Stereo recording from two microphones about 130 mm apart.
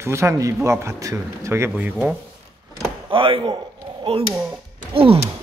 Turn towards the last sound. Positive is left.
turn(degrees=-45)  # may be behind; listen again after turning